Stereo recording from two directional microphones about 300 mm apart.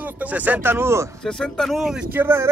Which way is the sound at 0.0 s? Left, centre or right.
Centre.